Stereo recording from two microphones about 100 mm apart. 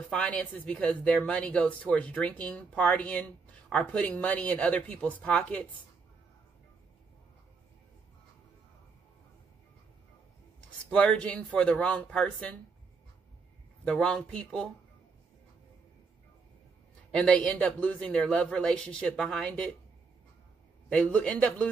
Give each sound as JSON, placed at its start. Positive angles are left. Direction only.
{"t": 0.1, "sound": "speech", "side_deg": 10}
{"t": 10.9, "sound": "speech", "side_deg": 10}
{"t": 13.8, "sound": "speech", "side_deg": 10}
{"t": 17.1, "sound": "speech", "side_deg": 10}
{"t": 20.9, "sound": "speech", "side_deg": 15}